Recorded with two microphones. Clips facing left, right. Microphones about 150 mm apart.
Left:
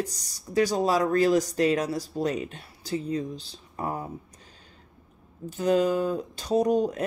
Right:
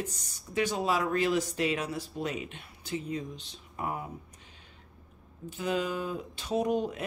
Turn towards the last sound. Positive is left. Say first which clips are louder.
# left 6 dB
turn(degrees=40)  # may be behind; listen again after turning